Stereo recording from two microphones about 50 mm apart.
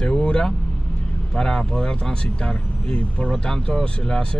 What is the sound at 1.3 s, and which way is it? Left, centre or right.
A man's voice, centre.